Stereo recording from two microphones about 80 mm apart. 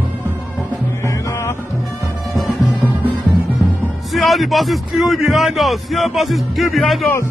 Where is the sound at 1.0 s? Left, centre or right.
Left.